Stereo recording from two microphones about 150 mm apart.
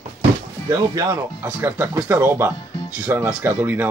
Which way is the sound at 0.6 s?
20° right (ahead or behind).